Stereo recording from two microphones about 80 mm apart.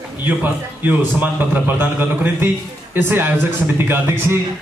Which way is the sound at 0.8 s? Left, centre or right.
Right.